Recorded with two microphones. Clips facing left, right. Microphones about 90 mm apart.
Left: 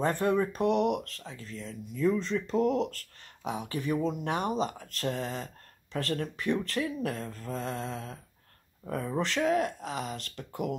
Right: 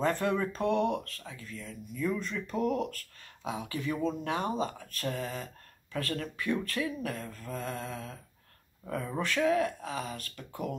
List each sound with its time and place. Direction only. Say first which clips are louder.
0.0 s speech: left 2 dB; 20° left (ahead or behind)